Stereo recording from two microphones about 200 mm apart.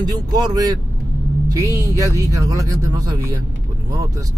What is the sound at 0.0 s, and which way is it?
Speech, 20° right (ahead or behind).